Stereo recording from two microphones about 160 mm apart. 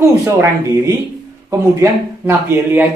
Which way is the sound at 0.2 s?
20° right (ahead or behind).